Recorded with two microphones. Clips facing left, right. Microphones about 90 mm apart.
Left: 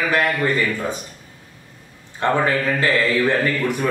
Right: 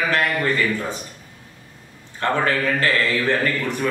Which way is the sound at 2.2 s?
15° left (ahead or behind).